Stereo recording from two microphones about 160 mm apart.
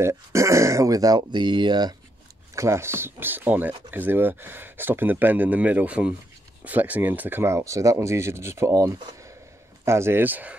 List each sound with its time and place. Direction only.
0.0 s speech: 20° right (ahead or behind)